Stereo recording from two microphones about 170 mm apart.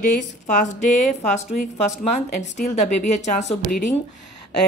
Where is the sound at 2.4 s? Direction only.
45° left (ahead or behind).